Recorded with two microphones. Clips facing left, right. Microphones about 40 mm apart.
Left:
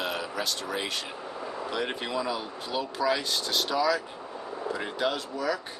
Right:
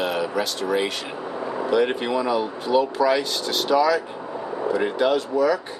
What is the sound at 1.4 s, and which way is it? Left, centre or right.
Vehicle, right.